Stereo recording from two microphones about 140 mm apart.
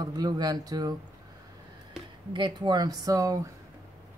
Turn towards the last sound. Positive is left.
turn(degrees=-25)  # may be behind; listen again after turning